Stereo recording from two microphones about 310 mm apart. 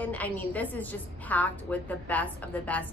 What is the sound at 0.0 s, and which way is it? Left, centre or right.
A woman's voice, centre.